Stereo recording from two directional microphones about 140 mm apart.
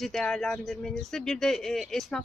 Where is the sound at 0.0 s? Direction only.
5° left (ahead or behind).